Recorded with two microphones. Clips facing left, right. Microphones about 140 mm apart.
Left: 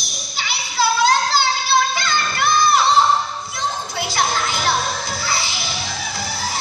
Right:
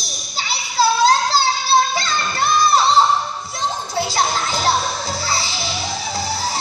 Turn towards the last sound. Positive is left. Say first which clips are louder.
# right 3 dB
turn(degrees=-35)  # may be behind; listen again after turning